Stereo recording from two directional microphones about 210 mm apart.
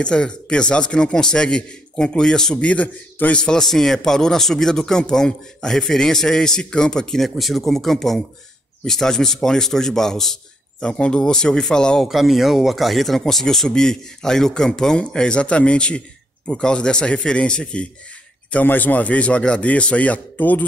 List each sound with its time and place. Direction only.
0.0 s a man's voice: 5° left (ahead or behind)